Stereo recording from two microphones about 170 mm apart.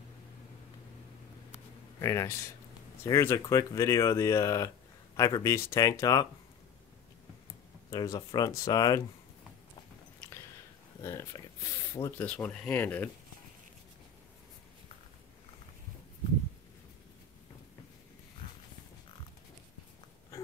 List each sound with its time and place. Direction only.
2.0 s speech: 15° left (ahead or behind)
7.9 s speech: 25° left (ahead or behind)
11.0 s speech: 20° left (ahead or behind)